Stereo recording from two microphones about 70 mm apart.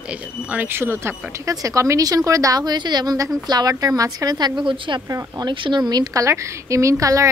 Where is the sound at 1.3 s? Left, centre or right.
Right.